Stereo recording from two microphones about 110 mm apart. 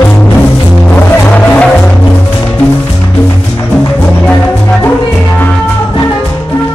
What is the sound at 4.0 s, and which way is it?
Music, 15° left (ahead or behind).